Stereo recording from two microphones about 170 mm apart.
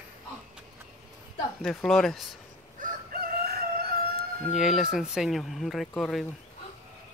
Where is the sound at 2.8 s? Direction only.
55° right (ahead or behind).